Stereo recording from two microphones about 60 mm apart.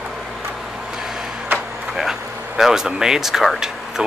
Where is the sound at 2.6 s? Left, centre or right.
Centre.